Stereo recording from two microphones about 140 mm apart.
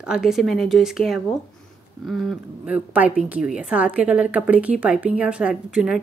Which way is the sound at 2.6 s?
10° right (ahead or behind).